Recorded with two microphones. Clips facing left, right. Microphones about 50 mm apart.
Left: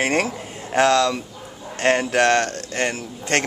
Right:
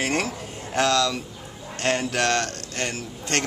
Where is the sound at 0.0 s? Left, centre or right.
Left.